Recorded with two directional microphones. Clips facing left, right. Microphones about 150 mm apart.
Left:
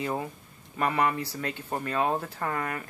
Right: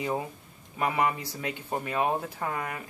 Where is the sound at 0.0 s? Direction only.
5° right (ahead or behind).